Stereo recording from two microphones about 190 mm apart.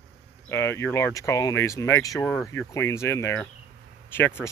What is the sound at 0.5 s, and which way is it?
Speech, 15° left (ahead or behind).